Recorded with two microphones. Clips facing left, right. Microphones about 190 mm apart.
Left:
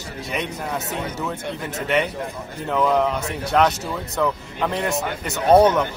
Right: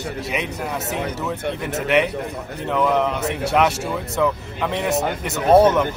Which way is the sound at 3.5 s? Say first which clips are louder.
Left 1 dB; 5° right (ahead or behind).